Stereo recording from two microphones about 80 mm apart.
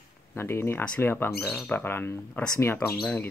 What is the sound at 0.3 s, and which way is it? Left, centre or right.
Speech, left.